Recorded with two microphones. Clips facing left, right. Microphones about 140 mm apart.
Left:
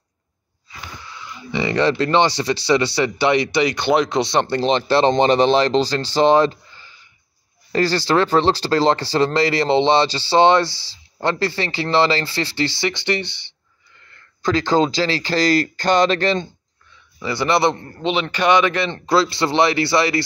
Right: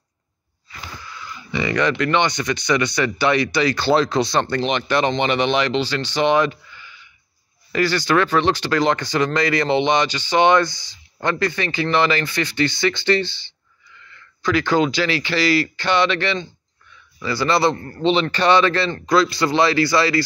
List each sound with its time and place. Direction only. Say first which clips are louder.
0.7 s speech: even; 20° left (ahead or behind)
14.1 s a sound: left 1 dB; 45° left (ahead or behind)
14.7 s speech: left 2 dB; 35° left (ahead or behind)
17.2 s a man's voice: left 1 dB; 20° left (ahead or behind)
18.9 s speech: even; 25° left (ahead or behind)